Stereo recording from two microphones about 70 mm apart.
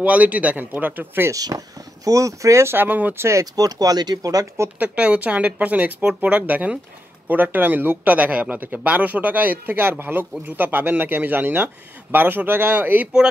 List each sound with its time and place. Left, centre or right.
0.0 s speech: centre
1.3 s speech: right
3.5 s speech: right
4.7 s speech: centre